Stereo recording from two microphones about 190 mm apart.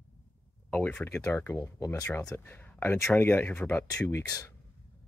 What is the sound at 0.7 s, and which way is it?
Speech, 10° left (ahead or behind).